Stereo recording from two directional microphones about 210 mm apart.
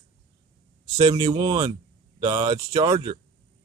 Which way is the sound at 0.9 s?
20° right (ahead or behind).